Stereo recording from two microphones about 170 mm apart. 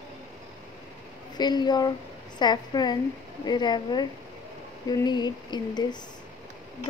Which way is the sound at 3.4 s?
25° left (ahead or behind).